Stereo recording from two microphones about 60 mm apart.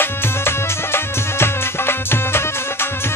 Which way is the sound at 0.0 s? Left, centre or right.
Left.